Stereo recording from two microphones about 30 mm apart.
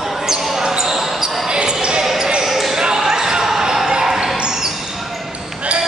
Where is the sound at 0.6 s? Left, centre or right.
Centre.